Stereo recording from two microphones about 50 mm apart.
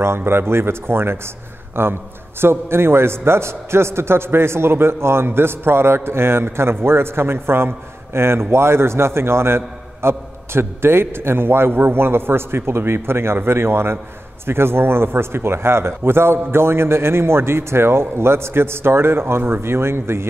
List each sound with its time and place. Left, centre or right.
0.2 s a man's voice: right